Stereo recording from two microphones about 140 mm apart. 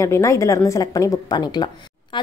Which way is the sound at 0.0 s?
20° left (ahead or behind).